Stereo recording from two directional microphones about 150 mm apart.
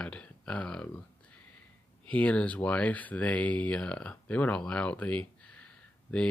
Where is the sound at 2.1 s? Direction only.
10° left (ahead or behind).